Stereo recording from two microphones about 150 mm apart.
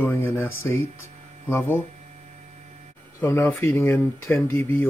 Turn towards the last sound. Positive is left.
turn(degrees=15)  # may be behind; listen again after turning